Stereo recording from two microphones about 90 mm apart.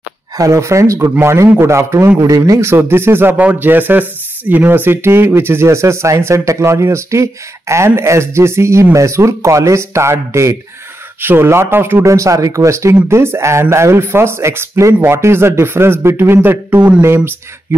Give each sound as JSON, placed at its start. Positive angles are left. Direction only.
{"t": 0.4, "sound": "speech", "side_deg": -30}
{"t": 2.6, "sound": "speech", "side_deg": -25}